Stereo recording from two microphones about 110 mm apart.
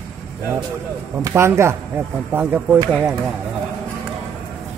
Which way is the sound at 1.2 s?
25° right (ahead or behind).